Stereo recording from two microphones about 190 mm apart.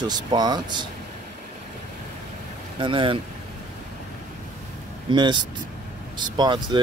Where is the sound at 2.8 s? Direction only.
25° right (ahead or behind).